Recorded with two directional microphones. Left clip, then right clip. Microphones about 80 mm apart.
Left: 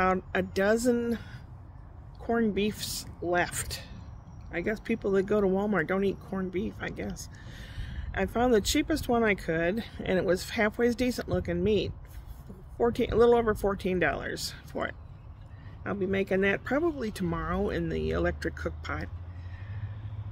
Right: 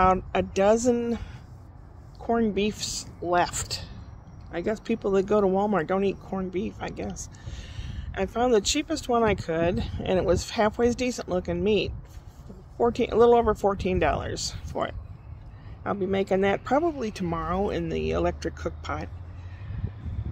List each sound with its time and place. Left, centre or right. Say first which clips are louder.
0.0 s speech: right 5 dB; centre; by 6.5 s left
6.5 s speech: right 2 dB; centre
15.8 s speech: right 3 dB; centre